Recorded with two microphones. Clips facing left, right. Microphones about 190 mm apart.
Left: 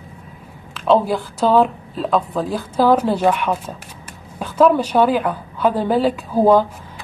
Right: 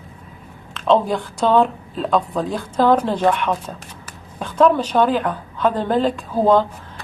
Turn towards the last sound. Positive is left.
turn(degrees=10)  # may be behind; listen again after turning